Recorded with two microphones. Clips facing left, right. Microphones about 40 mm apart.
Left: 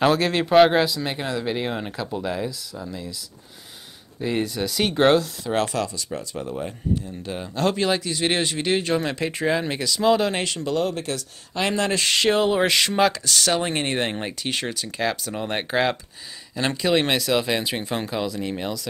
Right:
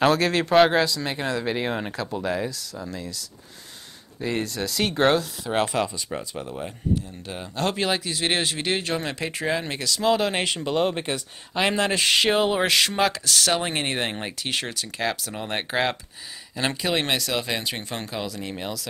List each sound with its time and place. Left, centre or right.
0.0 s speech: centre
4.2 s speech: centre
5.5 s speech: centre
6.3 s speech: centre
10.6 s speech: right; by 18.8 s centre